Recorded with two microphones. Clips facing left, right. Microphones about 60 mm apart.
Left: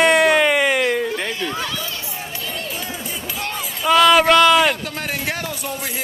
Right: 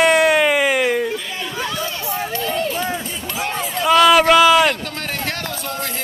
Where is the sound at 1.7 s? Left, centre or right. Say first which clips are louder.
Right 4 dB; right.